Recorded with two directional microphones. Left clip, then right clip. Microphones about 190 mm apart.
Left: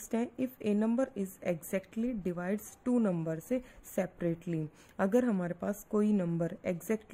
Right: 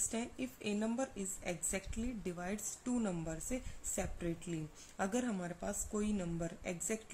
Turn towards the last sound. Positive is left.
turn(degrees=50)  # may be behind; listen again after turning